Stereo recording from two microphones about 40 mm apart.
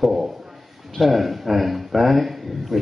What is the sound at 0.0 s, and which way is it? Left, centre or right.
Speech, centre.